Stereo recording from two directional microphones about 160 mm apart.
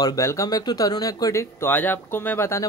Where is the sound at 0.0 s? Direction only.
20° left (ahead or behind).